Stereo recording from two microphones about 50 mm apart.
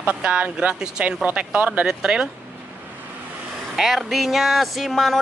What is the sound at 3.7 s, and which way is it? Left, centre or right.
Speech, centre.